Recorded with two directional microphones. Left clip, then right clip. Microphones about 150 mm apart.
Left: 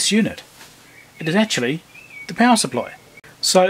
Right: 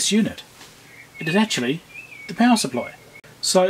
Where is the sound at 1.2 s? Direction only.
25° left (ahead or behind).